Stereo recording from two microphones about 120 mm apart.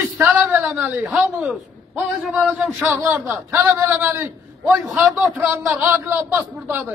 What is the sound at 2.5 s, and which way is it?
A man's voice, 15° right (ahead or behind).